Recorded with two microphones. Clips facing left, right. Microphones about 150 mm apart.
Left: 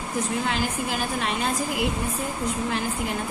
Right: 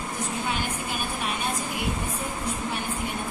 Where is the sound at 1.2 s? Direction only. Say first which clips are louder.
Left 3 dB; 90° left.